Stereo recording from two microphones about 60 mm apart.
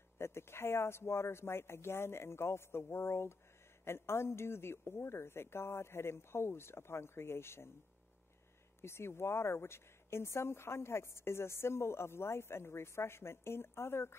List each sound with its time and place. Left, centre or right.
0.2 s speech: left
8.8 s speech: left